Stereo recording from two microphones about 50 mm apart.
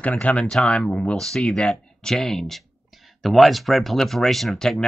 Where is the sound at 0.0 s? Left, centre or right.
Left.